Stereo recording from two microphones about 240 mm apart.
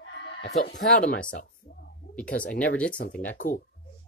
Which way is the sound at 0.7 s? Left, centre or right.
Left.